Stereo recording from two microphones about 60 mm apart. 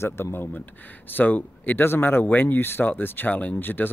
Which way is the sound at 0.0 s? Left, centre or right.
Left.